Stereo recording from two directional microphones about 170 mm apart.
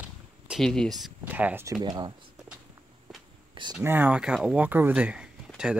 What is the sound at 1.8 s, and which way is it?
Speech, 25° right (ahead or behind).